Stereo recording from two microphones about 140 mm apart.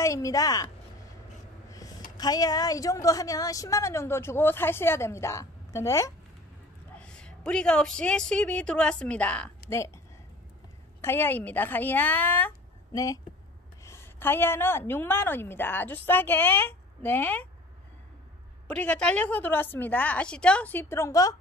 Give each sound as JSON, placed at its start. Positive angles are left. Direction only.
{"t": 0.0, "sound": "a woman's voice", "side_deg": 20}
{"t": 1.7, "sound": "a sound", "side_deg": 25}
{"t": 2.1, "sound": "a woman's voice", "side_deg": 30}
{"t": 7.0, "sound": "a woman's voice", "side_deg": 5}
{"t": 9.7, "sound": "a woman's voice", "side_deg": 20}
{"t": 11.0, "sound": "a woman's voice", "side_deg": 15}
{"t": 12.9, "sound": "a woman's voice", "side_deg": 25}
{"t": 18.7, "sound": "a woman's voice", "side_deg": 5}